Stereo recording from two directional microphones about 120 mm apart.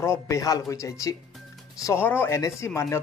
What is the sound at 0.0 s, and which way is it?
Speech, 25° left (ahead or behind).